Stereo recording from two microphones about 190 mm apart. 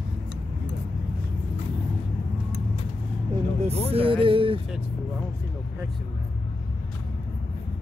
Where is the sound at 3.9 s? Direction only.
30° right (ahead or behind).